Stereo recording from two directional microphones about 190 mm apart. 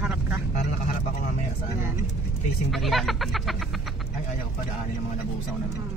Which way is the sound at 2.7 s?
Centre (ahead or behind).